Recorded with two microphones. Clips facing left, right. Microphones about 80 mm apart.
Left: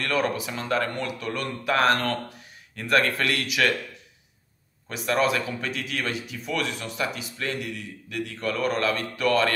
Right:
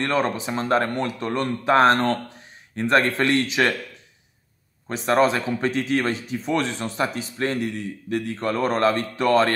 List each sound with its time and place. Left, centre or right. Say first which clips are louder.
0.0 s speech: right 3 dB; right
4.8 s speech: right 5 dB; right